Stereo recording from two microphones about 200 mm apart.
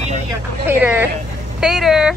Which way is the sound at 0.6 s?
10° right (ahead or behind).